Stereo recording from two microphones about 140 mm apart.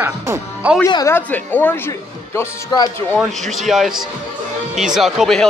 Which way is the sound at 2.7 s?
30° left (ahead or behind).